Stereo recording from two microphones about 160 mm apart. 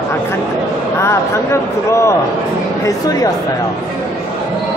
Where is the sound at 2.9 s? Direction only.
20° left (ahead or behind).